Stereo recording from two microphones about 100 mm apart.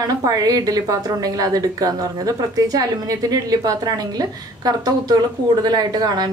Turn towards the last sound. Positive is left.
turn(degrees=-45)  # may be behind; listen again after turning